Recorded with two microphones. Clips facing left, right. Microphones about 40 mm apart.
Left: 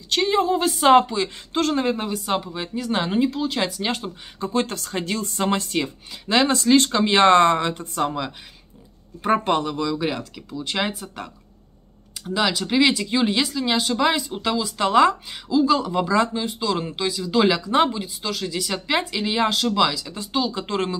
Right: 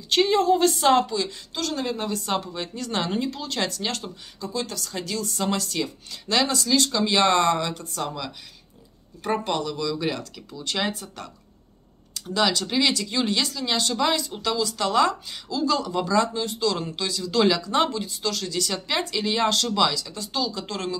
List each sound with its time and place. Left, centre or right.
0.1 s speech: centre
0.8 s a woman's voice: left
2.0 s speech: centre
4.4 s speech: left
9.3 s speech: left
9.9 s speech: centre